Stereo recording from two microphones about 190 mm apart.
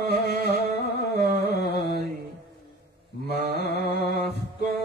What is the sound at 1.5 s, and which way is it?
Mantra, 60° left (ahead or behind).